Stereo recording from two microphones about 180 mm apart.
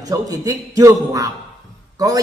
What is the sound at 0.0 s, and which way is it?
A man's voice, 20° right (ahead or behind).